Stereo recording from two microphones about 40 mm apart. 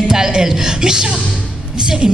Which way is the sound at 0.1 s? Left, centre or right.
Centre.